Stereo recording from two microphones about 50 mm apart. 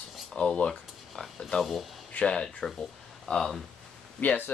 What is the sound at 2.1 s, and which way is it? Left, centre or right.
Speech, left.